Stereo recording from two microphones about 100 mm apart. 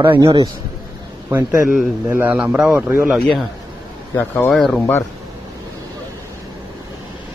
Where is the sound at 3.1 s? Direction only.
5° left (ahead or behind).